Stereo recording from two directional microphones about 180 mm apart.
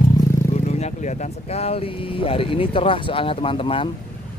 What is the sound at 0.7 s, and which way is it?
Speech, 40° left (ahead or behind).